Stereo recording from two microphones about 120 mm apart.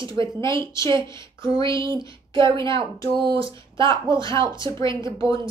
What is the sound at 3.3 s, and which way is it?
Speech, 45° right (ahead or behind).